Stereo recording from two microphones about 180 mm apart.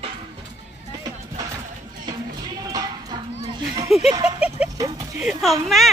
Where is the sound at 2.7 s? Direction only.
20° right (ahead or behind).